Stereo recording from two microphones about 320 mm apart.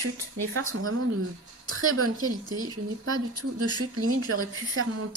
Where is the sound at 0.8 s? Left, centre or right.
Right.